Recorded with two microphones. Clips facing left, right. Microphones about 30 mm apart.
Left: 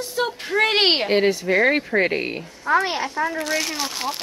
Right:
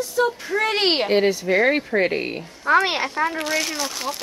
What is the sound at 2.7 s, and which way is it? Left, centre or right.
Speech, right.